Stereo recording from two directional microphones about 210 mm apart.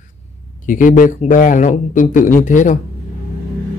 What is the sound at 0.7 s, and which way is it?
Speech, 40° left (ahead or behind).